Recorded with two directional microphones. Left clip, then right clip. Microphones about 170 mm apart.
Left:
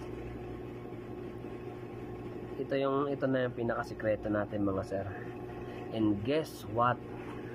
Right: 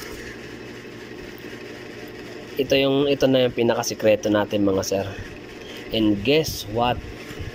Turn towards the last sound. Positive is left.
turn(degrees=-5)  # may be behind; listen again after turning